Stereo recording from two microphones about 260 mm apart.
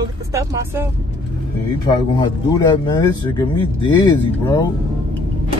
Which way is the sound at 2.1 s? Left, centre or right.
Centre.